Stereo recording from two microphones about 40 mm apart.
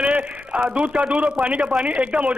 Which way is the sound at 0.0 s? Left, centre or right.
Right.